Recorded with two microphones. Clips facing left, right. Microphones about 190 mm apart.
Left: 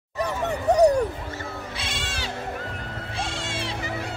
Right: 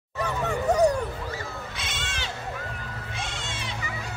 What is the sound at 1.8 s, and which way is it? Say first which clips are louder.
Music: left 3 dB; 35° left (ahead or behind).